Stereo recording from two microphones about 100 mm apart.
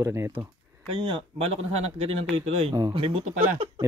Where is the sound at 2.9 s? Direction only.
70° right (ahead or behind).